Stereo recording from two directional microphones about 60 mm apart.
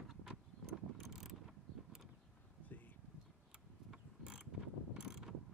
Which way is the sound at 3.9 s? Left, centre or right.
Centre.